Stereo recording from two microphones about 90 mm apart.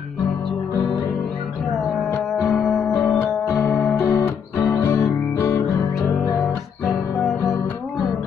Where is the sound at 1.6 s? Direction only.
Centre (ahead or behind).